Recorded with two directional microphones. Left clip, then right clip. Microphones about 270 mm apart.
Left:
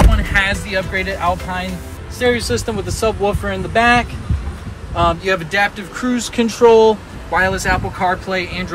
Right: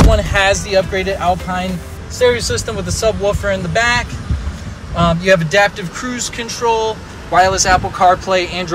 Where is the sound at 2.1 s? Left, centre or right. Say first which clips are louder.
Right 3 dB; centre.